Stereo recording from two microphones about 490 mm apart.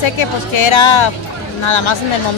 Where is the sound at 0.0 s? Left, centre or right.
Left.